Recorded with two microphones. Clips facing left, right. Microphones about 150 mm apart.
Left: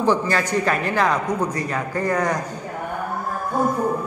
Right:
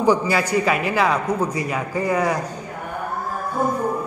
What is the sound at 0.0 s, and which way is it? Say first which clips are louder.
A man's voice: right 2 dB; 10° right (ahead or behind).